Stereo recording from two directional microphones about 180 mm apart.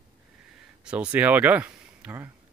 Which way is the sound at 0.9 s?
10° right (ahead or behind).